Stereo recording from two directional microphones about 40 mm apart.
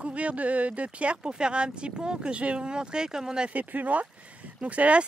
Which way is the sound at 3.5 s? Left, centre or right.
Right.